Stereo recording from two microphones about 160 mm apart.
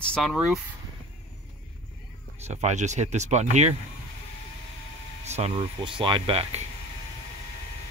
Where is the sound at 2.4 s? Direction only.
45° right (ahead or behind).